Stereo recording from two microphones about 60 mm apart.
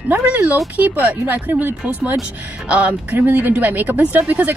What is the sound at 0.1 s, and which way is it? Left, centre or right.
Speech, right.